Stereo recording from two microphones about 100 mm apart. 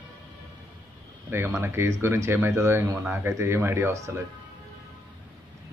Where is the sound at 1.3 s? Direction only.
25° right (ahead or behind).